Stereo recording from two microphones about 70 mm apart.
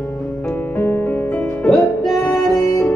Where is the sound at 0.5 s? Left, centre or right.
Left.